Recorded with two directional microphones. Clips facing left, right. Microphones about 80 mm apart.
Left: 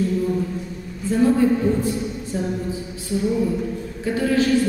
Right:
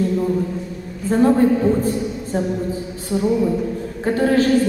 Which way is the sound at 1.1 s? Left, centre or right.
Right.